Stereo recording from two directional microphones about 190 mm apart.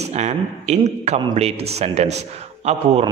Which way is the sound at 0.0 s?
35° right (ahead or behind).